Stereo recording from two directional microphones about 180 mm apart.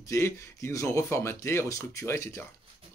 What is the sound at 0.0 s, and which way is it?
Speech, 15° left (ahead or behind).